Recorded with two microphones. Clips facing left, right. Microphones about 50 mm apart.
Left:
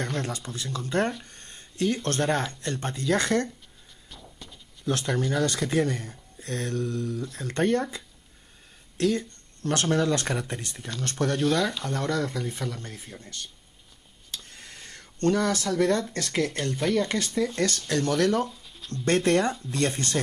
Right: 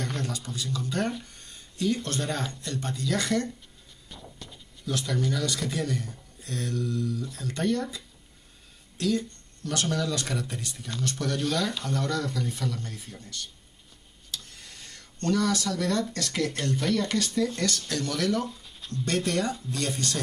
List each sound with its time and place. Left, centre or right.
0.2 s speech: left
1.4 s a sound: left
2.0 s speech: left
4.4 s a sound: centre
4.8 s speech: left
8.9 s a sound: left
9.8 s speech: left
11.3 s speech: centre
11.9 s speech: left
14.3 s speech: left
16.8 s speech: centre
17.2 s speech: left
18.4 s a sound: centre
19.0 s speech: left